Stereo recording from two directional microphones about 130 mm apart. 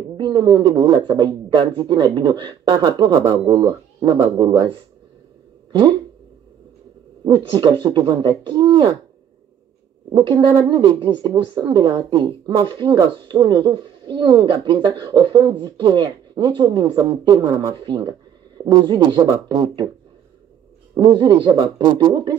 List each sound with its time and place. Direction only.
0.2 s speech: 35° right (ahead or behind)
7.2 s speech: 35° right (ahead or behind)
10.1 s speech: 35° right (ahead or behind)
20.9 s speech: 35° right (ahead or behind)